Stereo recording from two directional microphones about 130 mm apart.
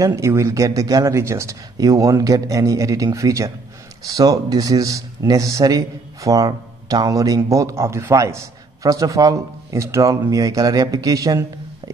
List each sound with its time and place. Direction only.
0.0 s speech: 25° right (ahead or behind)